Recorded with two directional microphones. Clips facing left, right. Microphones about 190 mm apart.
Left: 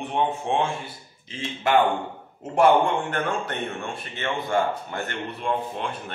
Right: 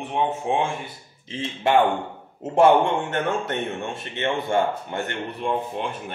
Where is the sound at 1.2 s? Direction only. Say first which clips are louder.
Right 2 dB; 25° right (ahead or behind).